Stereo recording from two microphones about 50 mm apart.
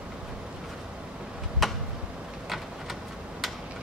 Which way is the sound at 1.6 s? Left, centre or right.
Centre.